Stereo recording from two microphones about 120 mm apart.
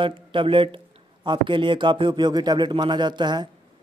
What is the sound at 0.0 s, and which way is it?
Speech, 45° right (ahead or behind).